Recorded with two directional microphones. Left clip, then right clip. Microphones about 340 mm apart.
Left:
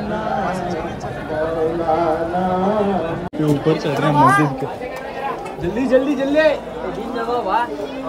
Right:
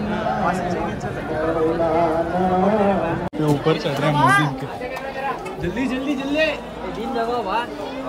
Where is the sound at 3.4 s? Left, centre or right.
Centre.